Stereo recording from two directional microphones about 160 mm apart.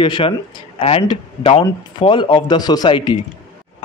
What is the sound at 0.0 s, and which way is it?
Speech, 30° left (ahead or behind).